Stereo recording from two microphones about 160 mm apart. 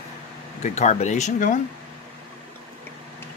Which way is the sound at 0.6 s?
45° left (ahead or behind).